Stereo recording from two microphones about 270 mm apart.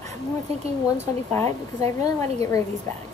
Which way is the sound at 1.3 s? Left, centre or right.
Centre.